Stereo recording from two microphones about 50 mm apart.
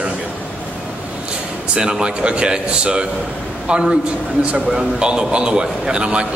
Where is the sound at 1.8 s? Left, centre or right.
Centre.